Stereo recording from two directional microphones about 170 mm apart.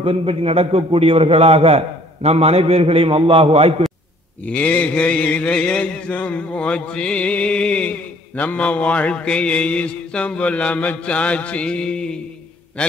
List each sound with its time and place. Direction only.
0.0 s a man's voice: 30° right (ahead or behind)
4.5 s mantra: 10° left (ahead or behind)